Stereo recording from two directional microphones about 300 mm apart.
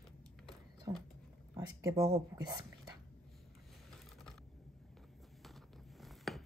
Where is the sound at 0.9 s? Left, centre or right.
Centre.